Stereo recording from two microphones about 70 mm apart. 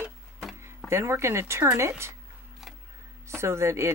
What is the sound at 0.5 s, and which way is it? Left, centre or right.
Speech, right.